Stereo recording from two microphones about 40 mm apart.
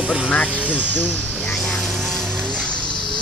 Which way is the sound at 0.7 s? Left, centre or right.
Left.